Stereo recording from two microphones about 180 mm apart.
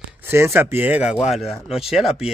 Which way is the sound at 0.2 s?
15° right (ahead or behind).